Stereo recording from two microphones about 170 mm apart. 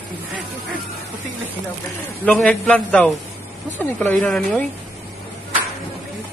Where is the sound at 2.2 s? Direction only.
5° left (ahead or behind).